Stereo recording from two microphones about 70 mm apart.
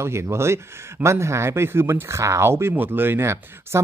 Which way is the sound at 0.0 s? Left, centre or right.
Right.